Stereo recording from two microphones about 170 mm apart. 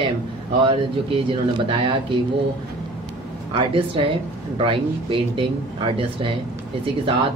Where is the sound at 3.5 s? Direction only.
30° right (ahead or behind).